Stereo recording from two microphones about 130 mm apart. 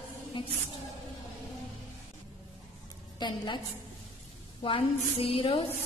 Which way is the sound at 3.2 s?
35° left (ahead or behind).